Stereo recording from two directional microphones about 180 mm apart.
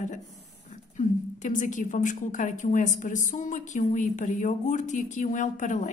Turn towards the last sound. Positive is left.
turn(degrees=45)  # may be behind; listen again after turning